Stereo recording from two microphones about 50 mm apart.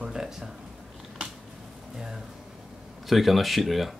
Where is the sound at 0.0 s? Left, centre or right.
Centre.